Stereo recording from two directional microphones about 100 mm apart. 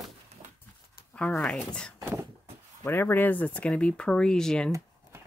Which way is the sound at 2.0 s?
25° right (ahead or behind).